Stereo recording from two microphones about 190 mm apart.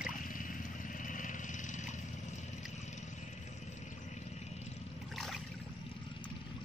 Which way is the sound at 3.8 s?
35° left (ahead or behind).